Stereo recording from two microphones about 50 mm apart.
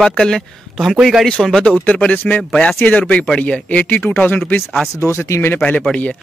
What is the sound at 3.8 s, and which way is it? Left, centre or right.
Speech, left.